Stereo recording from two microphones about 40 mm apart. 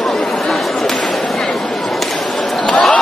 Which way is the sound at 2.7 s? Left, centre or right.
Centre.